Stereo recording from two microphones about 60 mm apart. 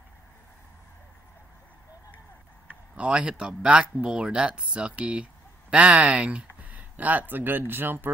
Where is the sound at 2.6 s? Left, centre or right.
Centre.